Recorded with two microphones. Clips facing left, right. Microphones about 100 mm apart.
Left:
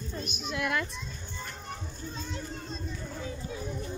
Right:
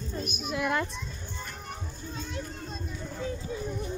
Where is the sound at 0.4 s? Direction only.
20° right (ahead or behind).